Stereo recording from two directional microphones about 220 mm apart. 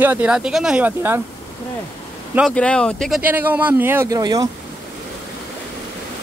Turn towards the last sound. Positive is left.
turn(degrees=-15)  # may be behind; listen again after turning